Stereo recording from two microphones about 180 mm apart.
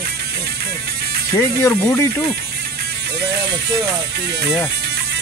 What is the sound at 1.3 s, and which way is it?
Speech, 15° left (ahead or behind).